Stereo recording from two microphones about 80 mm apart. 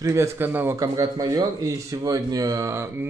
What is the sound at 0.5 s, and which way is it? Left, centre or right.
Speech, right.